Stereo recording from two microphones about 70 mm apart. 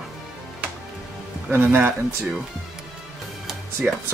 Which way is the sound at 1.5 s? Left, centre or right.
Right.